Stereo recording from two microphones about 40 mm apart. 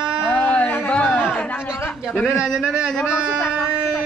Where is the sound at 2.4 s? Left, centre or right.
Centre.